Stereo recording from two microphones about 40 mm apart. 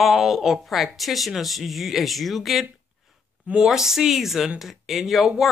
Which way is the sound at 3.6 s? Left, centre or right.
Centre.